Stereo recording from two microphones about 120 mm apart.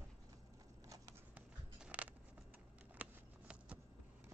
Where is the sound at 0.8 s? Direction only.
30° right (ahead or behind).